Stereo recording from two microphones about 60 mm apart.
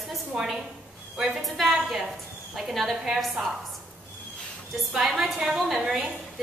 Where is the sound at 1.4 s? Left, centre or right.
Centre.